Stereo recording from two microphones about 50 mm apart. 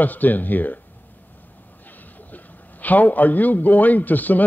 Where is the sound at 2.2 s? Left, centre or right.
Left.